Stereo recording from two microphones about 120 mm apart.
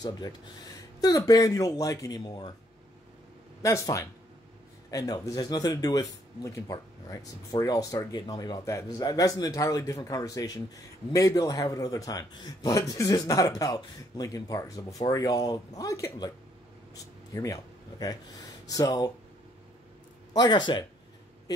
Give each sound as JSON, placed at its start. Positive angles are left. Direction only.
{"t": 1.0, "sound": "a man's voice", "side_deg": 30}
{"t": 3.6, "sound": "a man's voice", "side_deg": 25}
{"t": 20.3, "sound": "speech", "side_deg": 40}